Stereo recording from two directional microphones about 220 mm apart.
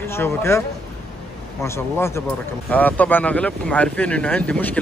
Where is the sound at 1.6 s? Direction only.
10° left (ahead or behind).